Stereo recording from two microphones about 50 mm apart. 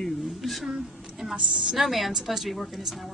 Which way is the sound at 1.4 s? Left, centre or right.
Centre.